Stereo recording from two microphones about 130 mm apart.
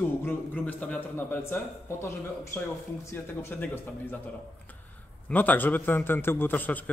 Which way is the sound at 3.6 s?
15° left (ahead or behind).